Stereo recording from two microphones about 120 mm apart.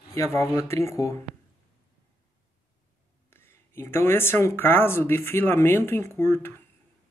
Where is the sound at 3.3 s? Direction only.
20° left (ahead or behind).